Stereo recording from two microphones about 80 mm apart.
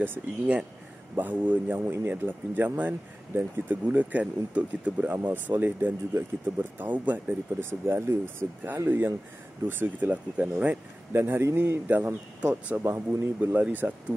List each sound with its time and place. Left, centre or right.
0.0 s speech: right
7.8 s speech: right
12.4 s speech: centre
12.8 s speech: right